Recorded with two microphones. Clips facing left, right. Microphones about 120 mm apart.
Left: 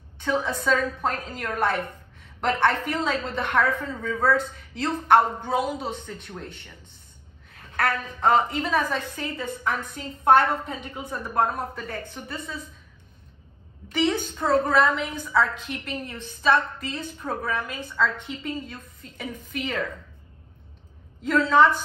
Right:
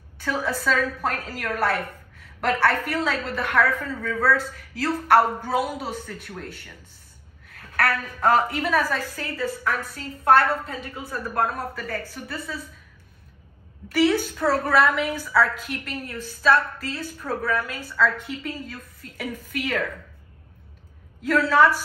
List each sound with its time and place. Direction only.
0.2 s a woman's voice: 20° left (ahead or behind)
1.8 s a sound: 25° left (ahead or behind)
3.2 s a woman's voice: 20° left (ahead or behind)
13.8 s a woman's voice: 20° left (ahead or behind)
21.3 s a woman's voice: 20° left (ahead or behind)